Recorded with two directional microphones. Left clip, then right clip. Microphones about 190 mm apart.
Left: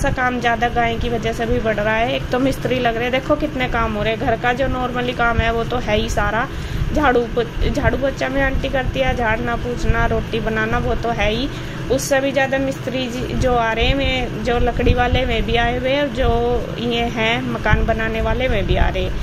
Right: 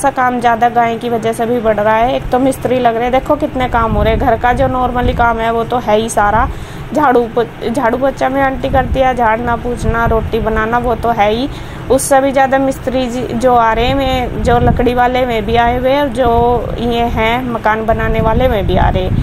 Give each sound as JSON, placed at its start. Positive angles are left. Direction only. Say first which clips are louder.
{"t": 0.4, "sound": "a woman's voice", "louder": "right 8 dB", "side_deg": -15}
{"t": 11.1, "sound": "a woman's voice", "louder": "right 8 dB", "side_deg": -15}